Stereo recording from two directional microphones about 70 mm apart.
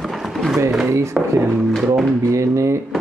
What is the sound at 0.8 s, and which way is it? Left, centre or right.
Speech, right.